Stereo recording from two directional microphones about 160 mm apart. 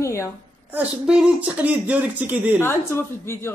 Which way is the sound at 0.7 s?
10° right (ahead or behind).